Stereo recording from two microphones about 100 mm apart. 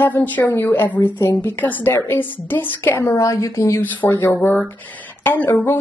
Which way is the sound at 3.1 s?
35° left (ahead or behind).